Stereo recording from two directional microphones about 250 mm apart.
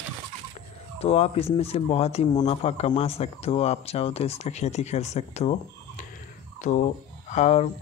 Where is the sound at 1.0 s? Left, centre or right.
Left.